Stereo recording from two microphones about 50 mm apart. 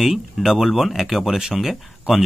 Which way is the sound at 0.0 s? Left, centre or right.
Centre.